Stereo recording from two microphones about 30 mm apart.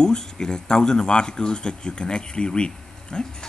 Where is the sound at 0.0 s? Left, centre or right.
Left.